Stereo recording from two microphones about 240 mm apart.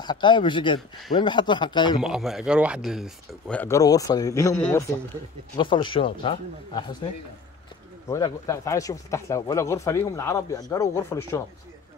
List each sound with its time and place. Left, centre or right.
0.0 s speech: centre
2.0 s speech: centre
5.6 s speech: left
8.1 s speech: centre